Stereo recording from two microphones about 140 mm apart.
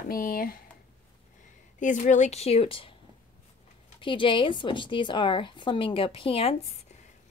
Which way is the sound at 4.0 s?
35° left (ahead or behind).